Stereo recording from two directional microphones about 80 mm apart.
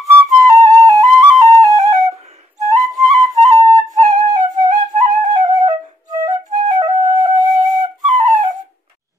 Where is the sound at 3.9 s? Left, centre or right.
Right.